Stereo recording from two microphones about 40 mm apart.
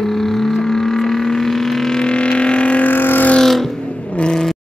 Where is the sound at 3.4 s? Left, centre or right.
Centre.